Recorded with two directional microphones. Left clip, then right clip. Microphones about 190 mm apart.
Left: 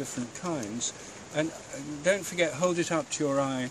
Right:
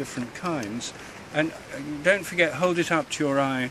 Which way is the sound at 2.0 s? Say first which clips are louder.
Right 5 dB; 5° left (ahead or behind).